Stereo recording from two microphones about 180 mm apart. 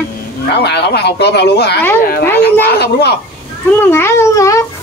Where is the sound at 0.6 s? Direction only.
65° left (ahead or behind).